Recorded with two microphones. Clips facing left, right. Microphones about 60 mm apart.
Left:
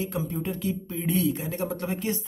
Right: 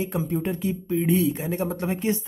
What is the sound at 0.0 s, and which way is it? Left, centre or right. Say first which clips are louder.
Speech: right 4 dB; right.